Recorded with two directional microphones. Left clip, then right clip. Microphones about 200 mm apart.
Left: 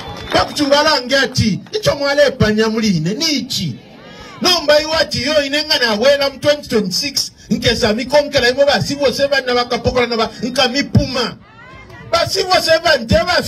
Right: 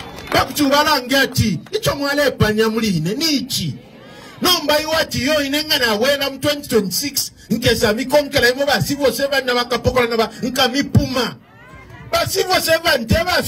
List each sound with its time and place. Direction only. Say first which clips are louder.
0.3 s a man's voice: left 2 dB; 45° right (ahead or behind)
4.7 s a man's voice: left 3 dB; 45° right (ahead or behind)